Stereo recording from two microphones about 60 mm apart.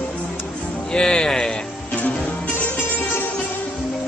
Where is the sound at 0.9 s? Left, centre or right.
Centre.